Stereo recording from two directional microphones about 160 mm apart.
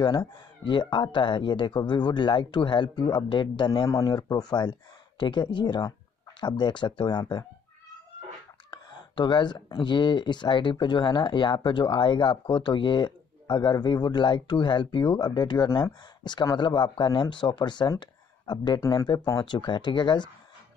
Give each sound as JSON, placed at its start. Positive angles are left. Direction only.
{"t": 0.0, "sound": "speech", "side_deg": 30}
{"t": 8.6, "sound": "speech", "side_deg": 30}